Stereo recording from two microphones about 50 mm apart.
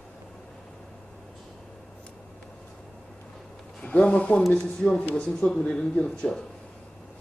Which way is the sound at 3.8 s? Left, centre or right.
Left.